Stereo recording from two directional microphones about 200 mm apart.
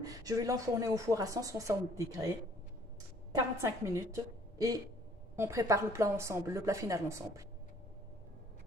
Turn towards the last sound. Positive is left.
turn(degrees=-15)  # may be behind; listen again after turning